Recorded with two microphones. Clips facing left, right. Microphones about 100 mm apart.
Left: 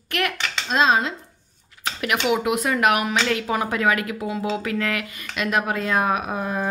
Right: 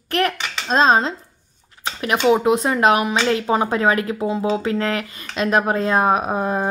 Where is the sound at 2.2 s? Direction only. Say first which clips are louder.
Right 7 dB; 30° right (ahead or behind).